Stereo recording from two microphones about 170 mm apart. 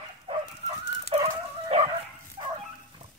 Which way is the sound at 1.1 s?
35° right (ahead or behind).